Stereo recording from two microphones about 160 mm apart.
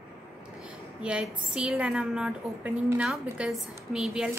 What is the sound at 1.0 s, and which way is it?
A woman's voice, 5° right (ahead or behind).